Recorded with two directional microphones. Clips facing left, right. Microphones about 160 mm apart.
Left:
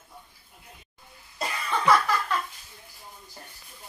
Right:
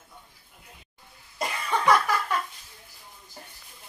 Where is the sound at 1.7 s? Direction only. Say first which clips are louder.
Even; 15° right (ahead or behind).